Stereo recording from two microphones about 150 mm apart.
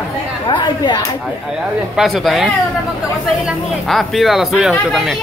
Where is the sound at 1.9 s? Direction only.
Centre (ahead or behind).